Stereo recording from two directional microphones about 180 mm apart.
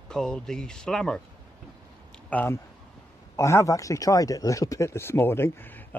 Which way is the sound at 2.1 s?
10° left (ahead or behind).